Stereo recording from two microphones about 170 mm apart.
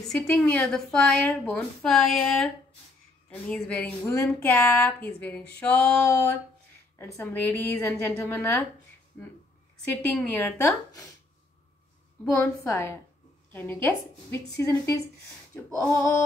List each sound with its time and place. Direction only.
0.1 s a woman's voice: 5° left (ahead or behind)
12.4 s speech: 15° left (ahead or behind)